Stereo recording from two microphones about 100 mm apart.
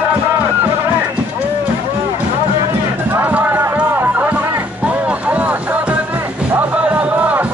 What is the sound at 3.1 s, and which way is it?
Music, 20° right (ahead or behind).